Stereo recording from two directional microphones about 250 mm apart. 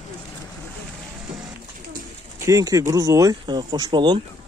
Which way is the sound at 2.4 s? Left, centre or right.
Centre.